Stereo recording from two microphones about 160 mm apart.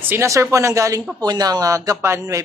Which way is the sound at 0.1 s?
15° right (ahead or behind).